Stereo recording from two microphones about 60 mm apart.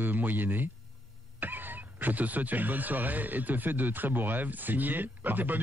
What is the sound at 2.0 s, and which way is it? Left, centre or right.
A man's voice, right.